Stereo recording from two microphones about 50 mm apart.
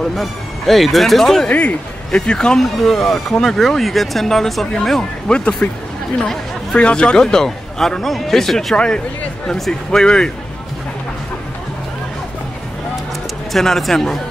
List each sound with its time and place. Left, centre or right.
0.1 s speech: centre
1.5 s speech: left
2.1 s speech: centre
5.3 s speech: centre
8.7 s speech: centre
13.5 s speech: centre